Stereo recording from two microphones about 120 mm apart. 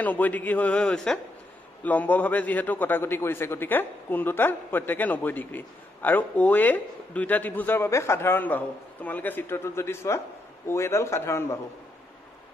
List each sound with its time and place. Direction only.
0.0 s a man's voice: 15° left (ahead or behind)